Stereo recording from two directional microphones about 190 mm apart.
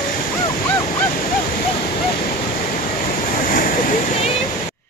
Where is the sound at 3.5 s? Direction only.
45° left (ahead or behind).